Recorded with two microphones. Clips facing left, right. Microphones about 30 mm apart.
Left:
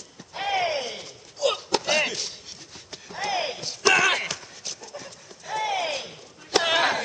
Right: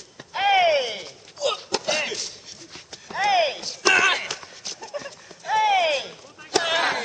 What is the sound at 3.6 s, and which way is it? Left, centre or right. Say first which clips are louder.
Clip-clop: right 1 dB; centre.